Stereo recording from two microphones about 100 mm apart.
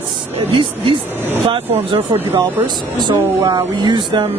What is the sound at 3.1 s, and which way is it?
Speech, 40° right (ahead or behind).